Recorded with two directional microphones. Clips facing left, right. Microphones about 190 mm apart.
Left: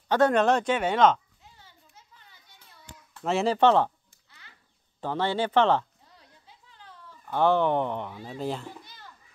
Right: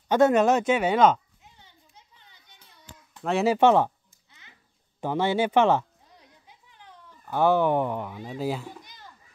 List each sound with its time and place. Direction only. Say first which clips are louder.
0.1 s speech: right 2 dB; 10° right (ahead or behind)
1.4 s a sound: left 1 dB; 20° right (ahead or behind)
3.3 s speech: right 2 dB; 5° right (ahead or behind)
4.3 s a sound: even; 20° right (ahead or behind)
8.2 s speech: right 2 dB; 10° right (ahead or behind)
8.8 s children playing: right 1 dB; 15° right (ahead or behind)